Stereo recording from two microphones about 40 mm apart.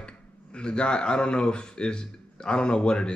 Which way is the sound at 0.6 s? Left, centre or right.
Left.